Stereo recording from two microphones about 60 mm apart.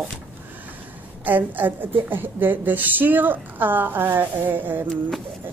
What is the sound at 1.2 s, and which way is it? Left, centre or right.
A woman's voice, right.